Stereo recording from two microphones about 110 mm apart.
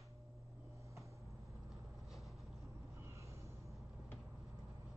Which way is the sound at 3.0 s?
25° right (ahead or behind).